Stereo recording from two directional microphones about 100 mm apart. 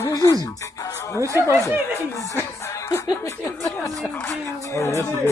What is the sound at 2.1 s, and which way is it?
Speech, 30° left (ahead or behind).